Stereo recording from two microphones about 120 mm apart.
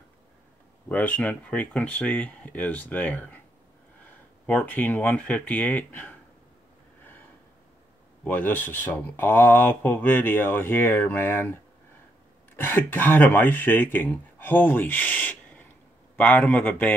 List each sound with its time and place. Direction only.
0.8 s speech: 15° left (ahead or behind)
4.5 s speech: 15° left (ahead or behind)
8.2 s speech: 15° left (ahead or behind)
12.5 s speech: 15° left (ahead or behind)